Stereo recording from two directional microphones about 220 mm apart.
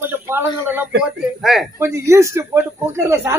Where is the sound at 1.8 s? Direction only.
15° right (ahead or behind).